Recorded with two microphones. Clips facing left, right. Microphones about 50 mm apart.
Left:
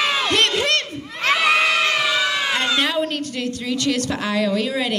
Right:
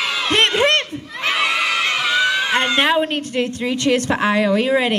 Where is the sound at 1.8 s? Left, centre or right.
Right.